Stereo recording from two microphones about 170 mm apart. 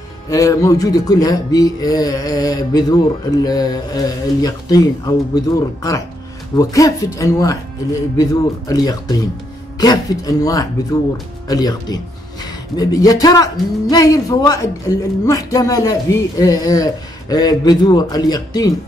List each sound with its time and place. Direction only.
0.3 s speech: 20° left (ahead or behind)